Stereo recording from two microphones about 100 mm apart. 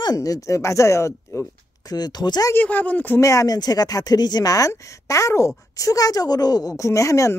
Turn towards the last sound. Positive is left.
turn(degrees=30)  # may be behind; listen again after turning